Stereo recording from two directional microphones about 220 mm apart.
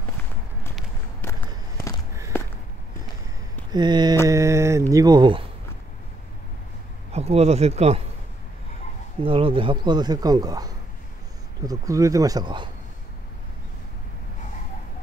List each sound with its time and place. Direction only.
3.7 s speech: 20° right (ahead or behind)
4.3 s mantra: 15° right (ahead or behind)
7.1 s speech: 30° right (ahead or behind)
9.2 s speech: 25° right (ahead or behind)
11.6 s mantra: 15° right (ahead or behind)